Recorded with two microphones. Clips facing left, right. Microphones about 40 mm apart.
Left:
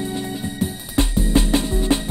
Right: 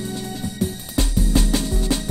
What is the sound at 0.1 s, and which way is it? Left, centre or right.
Music, left.